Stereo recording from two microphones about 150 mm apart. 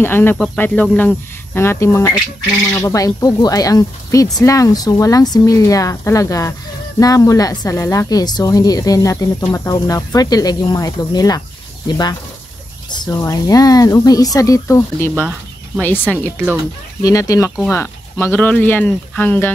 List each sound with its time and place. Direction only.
0.0 s a woman's voice: 15° left (ahead or behind)
13.2 s a woman's voice: 25° left (ahead or behind)